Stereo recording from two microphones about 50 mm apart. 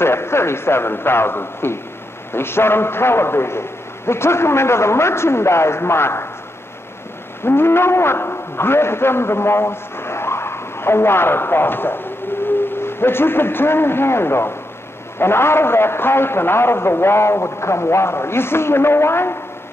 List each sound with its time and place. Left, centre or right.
0.0 s a man's voice: left
7.4 s a man's voice: left